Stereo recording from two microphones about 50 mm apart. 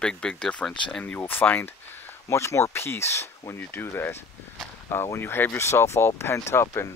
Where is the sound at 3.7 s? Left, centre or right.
Left.